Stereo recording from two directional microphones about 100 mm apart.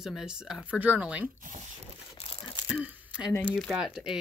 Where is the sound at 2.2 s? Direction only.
65° left (ahead or behind).